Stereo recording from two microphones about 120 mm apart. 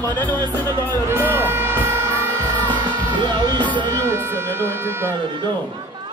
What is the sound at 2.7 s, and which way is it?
Music, 40° right (ahead or behind).